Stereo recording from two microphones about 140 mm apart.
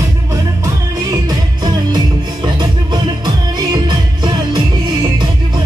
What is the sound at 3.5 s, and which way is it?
Music, 30° right (ahead or behind).